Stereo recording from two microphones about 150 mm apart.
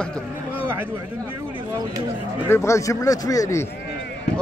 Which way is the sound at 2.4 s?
20° left (ahead or behind).